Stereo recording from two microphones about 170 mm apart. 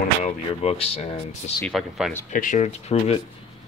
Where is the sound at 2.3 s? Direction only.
50° left (ahead or behind).